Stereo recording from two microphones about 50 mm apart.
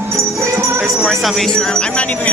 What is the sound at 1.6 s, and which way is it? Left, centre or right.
Speech, centre.